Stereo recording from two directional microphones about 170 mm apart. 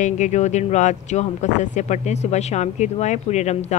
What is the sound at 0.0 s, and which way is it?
Speech, 45° left (ahead or behind).